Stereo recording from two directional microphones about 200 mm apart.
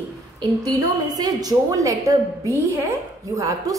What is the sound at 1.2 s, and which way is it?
Speech, 20° right (ahead or behind).